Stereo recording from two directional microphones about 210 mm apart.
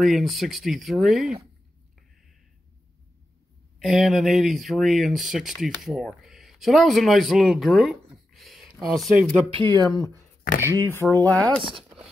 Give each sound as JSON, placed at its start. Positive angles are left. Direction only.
{"t": 0.0, "sound": "speech", "side_deg": 0}
{"t": 3.8, "sound": "speech", "side_deg": 0}
{"t": 9.5, "sound": "speech", "side_deg": -20}
{"t": 10.7, "sound": "speech", "side_deg": 10}